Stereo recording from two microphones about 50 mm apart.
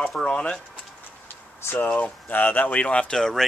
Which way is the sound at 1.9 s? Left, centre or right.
Left.